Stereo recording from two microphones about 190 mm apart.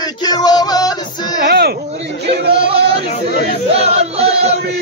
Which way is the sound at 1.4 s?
55° right (ahead or behind).